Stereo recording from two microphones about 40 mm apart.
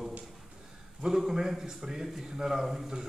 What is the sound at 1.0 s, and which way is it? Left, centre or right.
A man's voice, centre.